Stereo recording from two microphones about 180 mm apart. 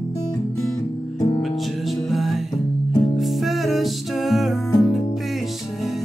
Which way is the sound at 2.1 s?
Centre (ahead or behind).